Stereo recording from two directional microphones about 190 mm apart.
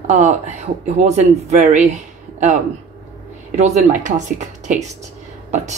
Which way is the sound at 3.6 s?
35° right (ahead or behind).